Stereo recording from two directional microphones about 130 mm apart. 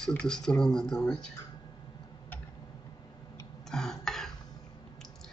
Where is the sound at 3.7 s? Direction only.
5° left (ahead or behind).